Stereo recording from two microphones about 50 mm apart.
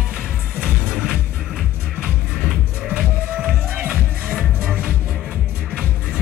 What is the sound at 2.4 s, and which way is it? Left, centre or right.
Music, centre.